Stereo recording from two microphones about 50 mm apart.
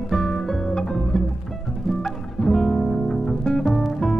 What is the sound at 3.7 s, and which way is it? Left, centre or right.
Music, centre.